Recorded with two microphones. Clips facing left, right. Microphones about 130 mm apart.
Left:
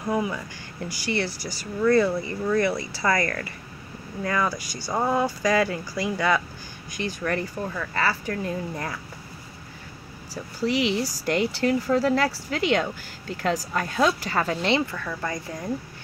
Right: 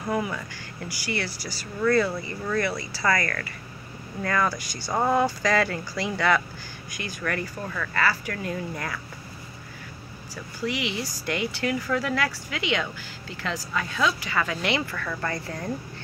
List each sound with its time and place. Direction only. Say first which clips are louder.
0.0 s speech: left 2 dB; 10° left (ahead or behind)
7.0 s speech: left 3 dB; 25° left (ahead or behind)
10.3 s speech: left 5 dB; 35° left (ahead or behind); by 15.7 s 15° left (ahead or behind)